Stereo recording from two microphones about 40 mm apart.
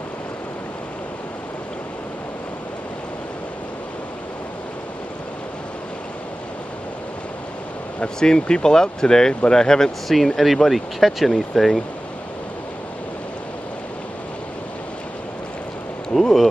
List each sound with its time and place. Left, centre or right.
8.2 s speech: centre
10.0 s speech: centre
16.2 s a sound: centre